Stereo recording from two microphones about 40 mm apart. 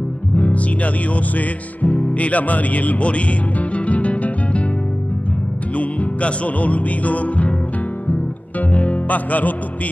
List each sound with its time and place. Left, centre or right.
0.4 s music: left
5.8 s music: left